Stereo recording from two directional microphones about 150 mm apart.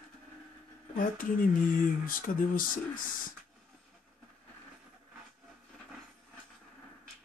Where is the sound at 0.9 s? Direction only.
65° left (ahead or behind).